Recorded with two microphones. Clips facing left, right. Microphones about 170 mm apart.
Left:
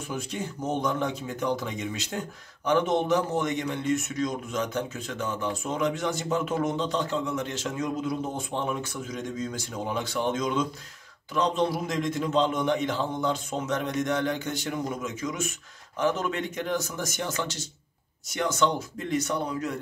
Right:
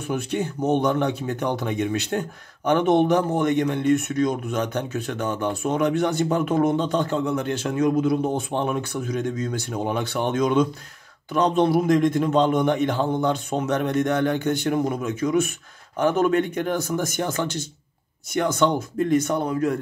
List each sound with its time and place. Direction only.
0.1 s speech: 65° right (ahead or behind)